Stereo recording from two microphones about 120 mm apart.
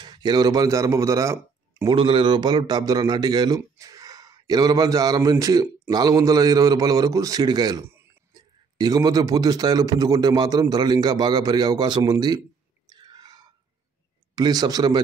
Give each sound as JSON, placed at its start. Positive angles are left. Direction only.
{"t": 0.0, "sound": "speech", "side_deg": -35}
{"t": 1.9, "sound": "a man's voice", "side_deg": -40}
{"t": 12.9, "sound": "a sound", "side_deg": -35}
{"t": 14.3, "sound": "a man's voice", "side_deg": -35}